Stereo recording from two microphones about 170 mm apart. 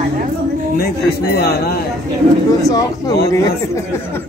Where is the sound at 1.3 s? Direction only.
65° left (ahead or behind).